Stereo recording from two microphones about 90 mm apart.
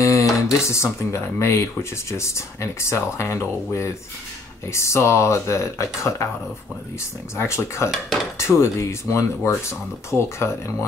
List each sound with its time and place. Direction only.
0.0 s speech: 35° left (ahead or behind)
7.3 s speech: 30° left (ahead or behind)